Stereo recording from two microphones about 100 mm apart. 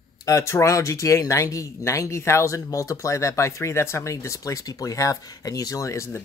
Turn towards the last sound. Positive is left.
turn(degrees=30)  # may be behind; listen again after turning